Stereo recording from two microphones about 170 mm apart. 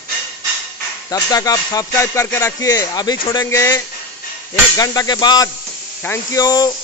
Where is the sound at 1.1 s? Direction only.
20° left (ahead or behind).